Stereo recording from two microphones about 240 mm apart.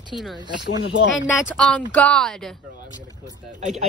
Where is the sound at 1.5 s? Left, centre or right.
Centre.